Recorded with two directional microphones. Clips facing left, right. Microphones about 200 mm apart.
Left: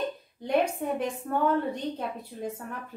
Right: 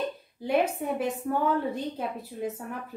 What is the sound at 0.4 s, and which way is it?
A woman's voice, 5° right (ahead or behind).